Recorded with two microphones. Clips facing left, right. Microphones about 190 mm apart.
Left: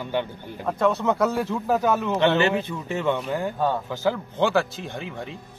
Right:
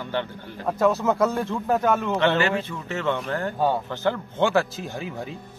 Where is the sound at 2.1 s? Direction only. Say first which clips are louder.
Left 1 dB; 20° left (ahead or behind).